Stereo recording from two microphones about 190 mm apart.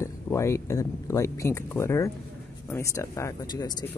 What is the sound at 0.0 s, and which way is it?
Speech, 15° left (ahead or behind).